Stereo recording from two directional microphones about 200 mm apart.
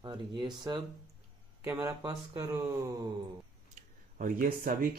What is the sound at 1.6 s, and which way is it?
Speech, 10° right (ahead or behind).